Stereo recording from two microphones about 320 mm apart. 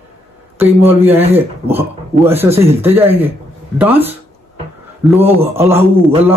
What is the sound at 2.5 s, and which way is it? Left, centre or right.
Speech, centre.